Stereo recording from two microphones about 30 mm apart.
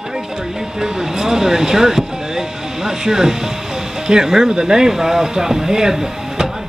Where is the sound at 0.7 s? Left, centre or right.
Right.